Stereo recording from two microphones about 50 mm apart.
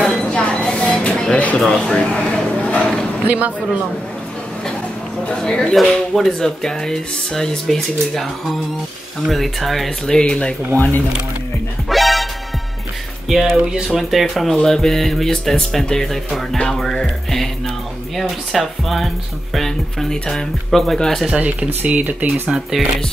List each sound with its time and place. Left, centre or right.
0.0 s a sound: centre
1.3 s a sound: left
1.6 s speech: centre
2.6 s a sound: left
3.3 s speech: right
5.4 s speech: centre
10.2 s speech: centre
11.9 s music: centre
13.3 s speech: centre
16.1 s speech: centre
18.5 s speech: centre
21.4 s speech: right
22.5 s speech: centre